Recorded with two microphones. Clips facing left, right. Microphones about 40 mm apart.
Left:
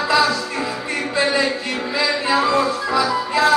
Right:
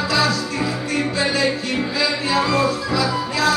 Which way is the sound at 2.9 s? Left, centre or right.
Left.